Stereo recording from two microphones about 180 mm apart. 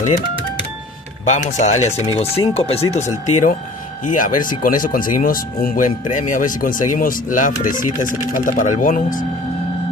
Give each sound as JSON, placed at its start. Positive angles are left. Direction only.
{"t": 1.2, "sound": "speech", "side_deg": 40}